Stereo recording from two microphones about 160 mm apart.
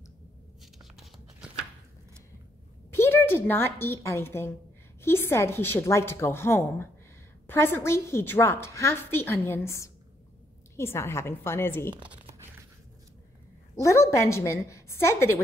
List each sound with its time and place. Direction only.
0.9 s a sound: centre (ahead or behind)
2.9 s a woman's voice: 15° left (ahead or behind)
13.7 s a woman's voice: 20° left (ahead or behind)